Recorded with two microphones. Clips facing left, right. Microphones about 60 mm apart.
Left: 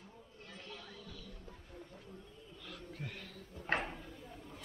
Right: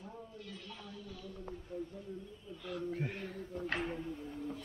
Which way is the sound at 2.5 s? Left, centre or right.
Centre.